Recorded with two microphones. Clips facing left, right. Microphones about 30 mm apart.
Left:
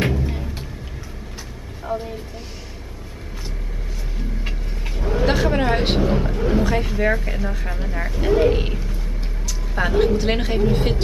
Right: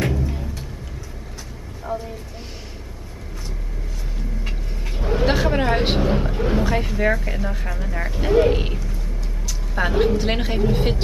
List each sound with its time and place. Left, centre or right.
1.9 s speech: left
4.9 s a sound: centre
7.9 s speech: centre